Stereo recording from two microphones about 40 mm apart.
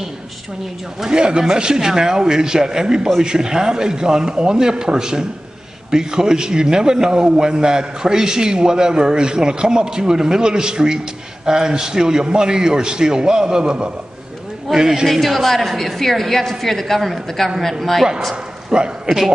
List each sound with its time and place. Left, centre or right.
1.0 s a man's voice: right
15.0 s a woman's voice: centre
18.3 s a man's voice: right
19.0 s a man's voice: centre